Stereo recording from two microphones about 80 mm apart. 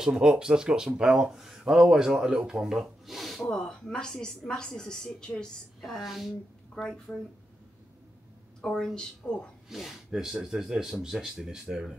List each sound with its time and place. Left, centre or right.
0.0 s a woman's voice: centre
6.8 s a woman's voice: centre
8.5 s a woman's voice: centre
9.7 s a woman's voice: centre